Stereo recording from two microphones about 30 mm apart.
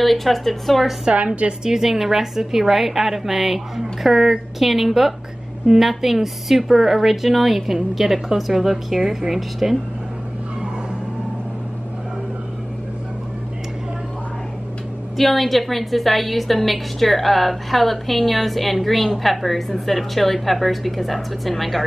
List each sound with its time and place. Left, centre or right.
0.0 s a woman's voice: centre
1.1 s a woman's voice: right
1.6 s a woman's voice: centre
15.1 s a woman's voice: centre